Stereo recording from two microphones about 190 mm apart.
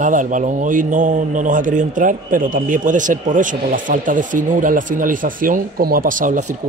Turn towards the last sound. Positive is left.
turn(degrees=-45)  # may be behind; listen again after turning